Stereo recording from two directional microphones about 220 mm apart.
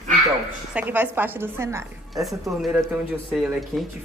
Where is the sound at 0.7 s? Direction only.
5° right (ahead or behind).